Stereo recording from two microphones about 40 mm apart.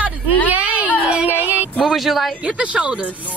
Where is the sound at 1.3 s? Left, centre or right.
Left.